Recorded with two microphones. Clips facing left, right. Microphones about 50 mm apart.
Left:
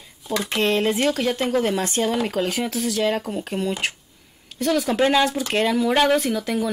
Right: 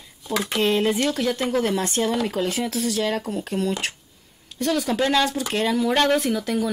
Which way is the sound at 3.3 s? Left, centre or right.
Centre.